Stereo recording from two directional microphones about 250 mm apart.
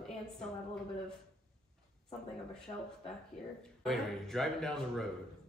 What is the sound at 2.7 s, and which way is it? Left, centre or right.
Speech, left.